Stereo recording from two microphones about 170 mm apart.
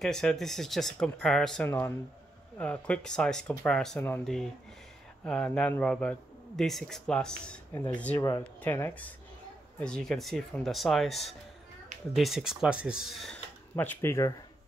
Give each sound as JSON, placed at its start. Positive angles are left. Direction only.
{"t": 0.0, "sound": "a man's voice", "side_deg": 5}
{"t": 1.7, "sound": "a man's voice", "side_deg": 15}
{"t": 8.2, "sound": "a man's voice", "side_deg": 20}